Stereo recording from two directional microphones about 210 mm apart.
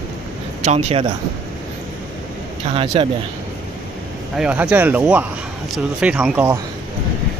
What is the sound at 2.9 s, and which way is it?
Speech, 25° right (ahead or behind).